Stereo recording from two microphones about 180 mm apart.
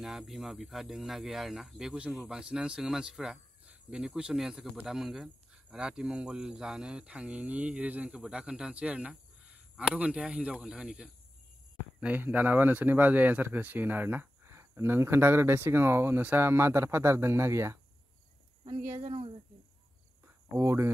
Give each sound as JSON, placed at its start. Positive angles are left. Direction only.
{"t": 0.0, "sound": "speech", "side_deg": 0}
{"t": 18.9, "sound": "speech", "side_deg": -40}
{"t": 20.5, "sound": "speech", "side_deg": -15}